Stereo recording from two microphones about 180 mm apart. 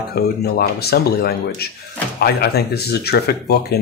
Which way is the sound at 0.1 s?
60° left (ahead or behind).